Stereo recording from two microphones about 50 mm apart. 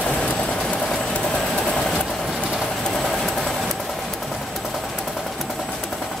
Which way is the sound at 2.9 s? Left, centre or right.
Centre.